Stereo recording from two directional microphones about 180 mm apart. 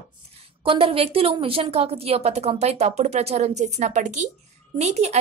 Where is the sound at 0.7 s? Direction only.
30° right (ahead or behind).